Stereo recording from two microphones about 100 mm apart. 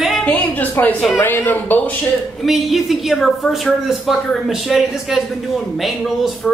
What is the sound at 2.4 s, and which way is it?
Speech, centre (ahead or behind).